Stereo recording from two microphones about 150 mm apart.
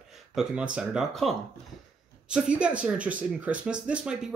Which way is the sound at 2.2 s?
5° right (ahead or behind).